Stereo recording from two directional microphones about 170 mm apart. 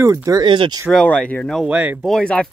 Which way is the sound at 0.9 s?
5° left (ahead or behind).